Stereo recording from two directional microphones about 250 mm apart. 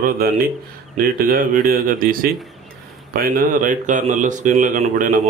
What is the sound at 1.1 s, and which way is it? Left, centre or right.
A man's voice, right.